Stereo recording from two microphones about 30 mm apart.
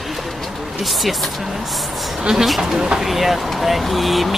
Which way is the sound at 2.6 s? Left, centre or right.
Centre.